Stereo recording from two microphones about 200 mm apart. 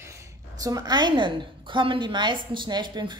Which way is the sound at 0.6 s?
20° right (ahead or behind).